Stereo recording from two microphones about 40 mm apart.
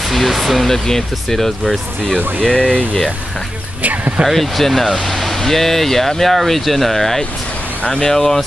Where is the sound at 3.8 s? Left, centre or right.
Right.